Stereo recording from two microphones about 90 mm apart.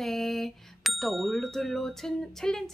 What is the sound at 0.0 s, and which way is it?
Bicycle bell, centre (ahead or behind).